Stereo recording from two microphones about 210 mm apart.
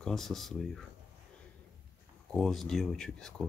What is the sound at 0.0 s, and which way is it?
Speech, centre (ahead or behind).